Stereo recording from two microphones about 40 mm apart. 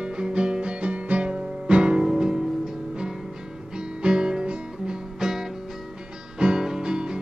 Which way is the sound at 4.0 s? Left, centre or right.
Right.